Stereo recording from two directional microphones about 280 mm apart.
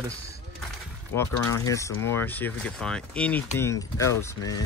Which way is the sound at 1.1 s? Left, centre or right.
Centre.